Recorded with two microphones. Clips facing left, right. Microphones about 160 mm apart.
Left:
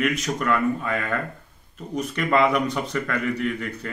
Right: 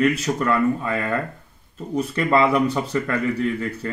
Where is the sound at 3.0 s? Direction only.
30° right (ahead or behind).